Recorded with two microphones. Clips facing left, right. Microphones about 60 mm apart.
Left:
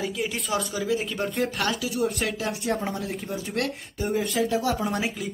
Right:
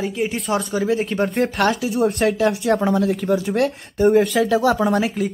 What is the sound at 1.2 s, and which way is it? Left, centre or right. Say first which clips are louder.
Speech: right 8 dB; right.